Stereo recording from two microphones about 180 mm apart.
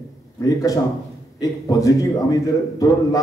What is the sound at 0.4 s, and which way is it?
A man's voice, 20° left (ahead or behind).